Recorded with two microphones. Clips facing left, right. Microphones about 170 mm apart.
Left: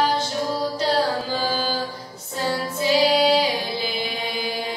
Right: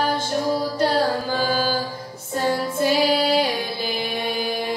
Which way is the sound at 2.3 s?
50° right (ahead or behind).